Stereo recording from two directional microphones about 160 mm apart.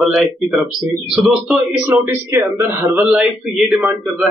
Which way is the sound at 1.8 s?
15° right (ahead or behind).